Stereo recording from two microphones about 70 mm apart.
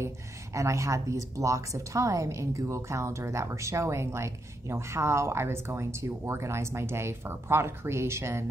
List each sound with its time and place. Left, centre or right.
0.6 s a woman's voice: right